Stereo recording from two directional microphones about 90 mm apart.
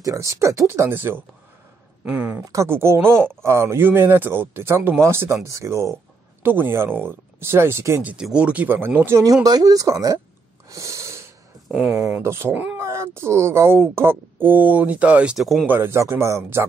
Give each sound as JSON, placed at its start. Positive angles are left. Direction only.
{"t": 0.0, "sound": "speech", "side_deg": -40}
{"t": 2.4, "sound": "speech", "side_deg": -35}
{"t": 6.4, "sound": "speech", "side_deg": -25}
{"t": 8.0, "sound": "speech", "side_deg": -15}
{"t": 9.2, "sound": "speech", "side_deg": -45}
{"t": 10.7, "sound": "a sound", "side_deg": -35}
{"t": 11.7, "sound": "speech", "side_deg": -10}
{"t": 12.2, "sound": "speech", "side_deg": -30}
{"t": 15.3, "sound": "speech", "side_deg": 0}
{"t": 15.6, "sound": "speech", "side_deg": -25}